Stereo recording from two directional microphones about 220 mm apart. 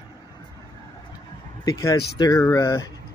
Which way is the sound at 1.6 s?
15° left (ahead or behind).